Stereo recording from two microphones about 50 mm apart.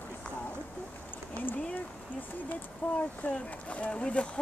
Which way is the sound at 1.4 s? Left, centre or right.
Left.